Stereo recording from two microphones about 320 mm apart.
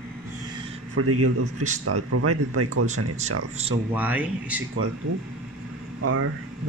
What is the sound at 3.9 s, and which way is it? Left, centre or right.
Speech, centre.